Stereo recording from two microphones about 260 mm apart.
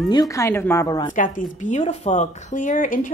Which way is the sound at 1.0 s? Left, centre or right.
Left.